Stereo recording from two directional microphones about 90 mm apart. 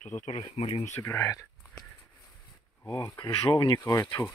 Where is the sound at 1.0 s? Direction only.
30° left (ahead or behind).